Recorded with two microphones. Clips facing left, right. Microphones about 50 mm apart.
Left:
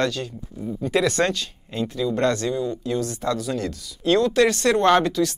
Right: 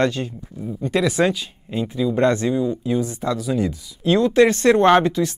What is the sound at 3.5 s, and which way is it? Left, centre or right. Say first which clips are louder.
A woman's voice: right 5 dB; centre.